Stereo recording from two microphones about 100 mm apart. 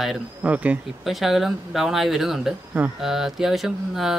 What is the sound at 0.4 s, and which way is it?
Speech, 15° right (ahead or behind).